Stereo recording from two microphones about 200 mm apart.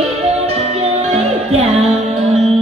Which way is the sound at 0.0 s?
30° right (ahead or behind).